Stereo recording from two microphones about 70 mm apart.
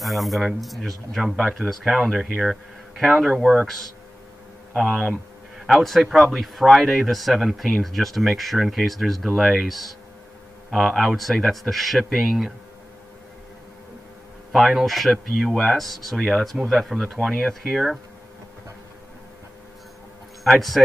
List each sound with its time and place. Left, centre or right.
0.0 s speech: centre
4.7 s speech: centre
5.7 s speech: centre
14.5 s speech: centre
20.4 s speech: centre